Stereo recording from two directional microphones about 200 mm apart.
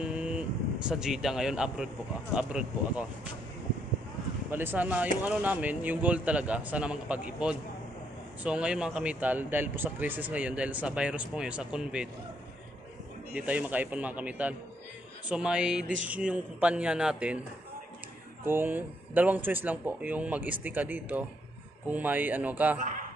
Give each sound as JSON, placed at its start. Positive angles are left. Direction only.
{"t": 0.0, "sound": "vehicle", "side_deg": -5}
{"t": 2.3, "sound": "a man's voice", "side_deg": -5}
{"t": 4.5, "sound": "speech", "side_deg": -10}
{"t": 13.3, "sound": "a man's voice", "side_deg": -5}
{"t": 18.4, "sound": "speech", "side_deg": -10}
{"t": 22.8, "sound": "speech", "side_deg": -40}